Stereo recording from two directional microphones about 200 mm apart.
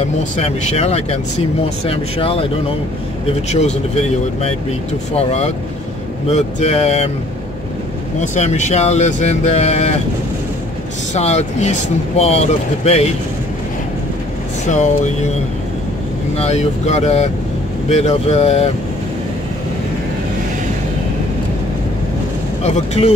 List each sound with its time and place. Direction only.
0.0 s speech: 30° left (ahead or behind)
8.2 s speech: 35° left (ahead or behind)
11.1 s speech: 35° left (ahead or behind)
14.7 s speech: 35° left (ahead or behind)
16.3 s speech: 35° left (ahead or behind)
22.6 s speech: 35° left (ahead or behind)